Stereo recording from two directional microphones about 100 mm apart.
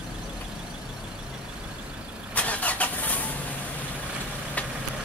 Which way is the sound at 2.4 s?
15° left (ahead or behind).